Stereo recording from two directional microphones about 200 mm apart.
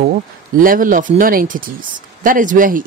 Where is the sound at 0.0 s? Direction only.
45° right (ahead or behind).